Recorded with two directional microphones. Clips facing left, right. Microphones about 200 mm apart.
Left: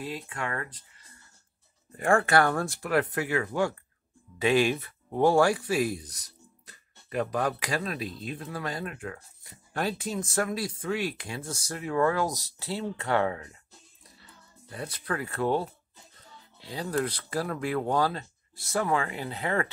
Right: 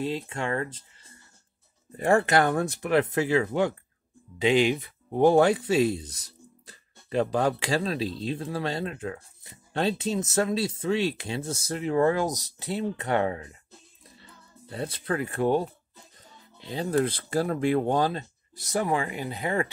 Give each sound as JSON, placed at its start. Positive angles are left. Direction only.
{"t": 0.0, "sound": "speech", "side_deg": -25}
{"t": 2.0, "sound": "speech", "side_deg": -20}
{"t": 14.7, "sound": "speech", "side_deg": -30}